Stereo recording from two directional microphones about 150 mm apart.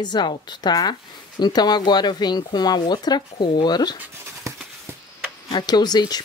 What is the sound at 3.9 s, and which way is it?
Dog, 15° right (ahead or behind).